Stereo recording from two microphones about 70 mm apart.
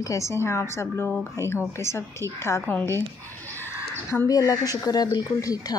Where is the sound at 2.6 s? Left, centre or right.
Left.